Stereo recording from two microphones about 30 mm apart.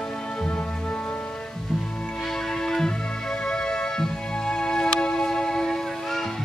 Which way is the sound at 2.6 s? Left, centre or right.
Centre.